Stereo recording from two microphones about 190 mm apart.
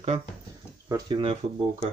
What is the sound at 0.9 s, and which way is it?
Speech, 25° right (ahead or behind).